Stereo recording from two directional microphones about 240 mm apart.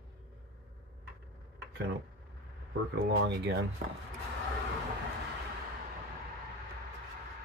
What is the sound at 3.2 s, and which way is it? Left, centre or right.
Speech, right.